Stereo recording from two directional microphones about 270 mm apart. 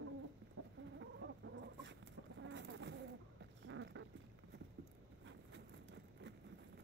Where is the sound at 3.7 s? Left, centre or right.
Right.